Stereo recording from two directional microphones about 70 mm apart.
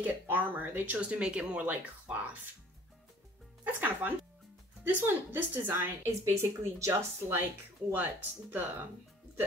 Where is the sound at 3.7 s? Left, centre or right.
Right.